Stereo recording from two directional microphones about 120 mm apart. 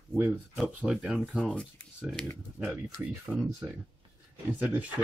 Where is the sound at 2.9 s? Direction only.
5° right (ahead or behind).